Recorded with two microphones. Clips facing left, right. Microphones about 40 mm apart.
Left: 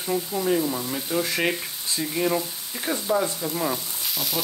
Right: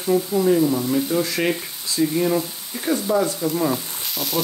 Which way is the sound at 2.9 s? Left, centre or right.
Centre.